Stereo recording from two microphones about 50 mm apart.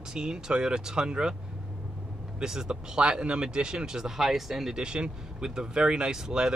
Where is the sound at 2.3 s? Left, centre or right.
Centre.